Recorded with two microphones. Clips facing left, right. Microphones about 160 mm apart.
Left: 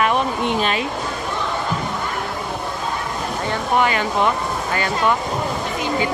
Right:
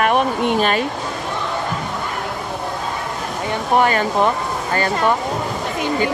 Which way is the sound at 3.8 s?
40° right (ahead or behind).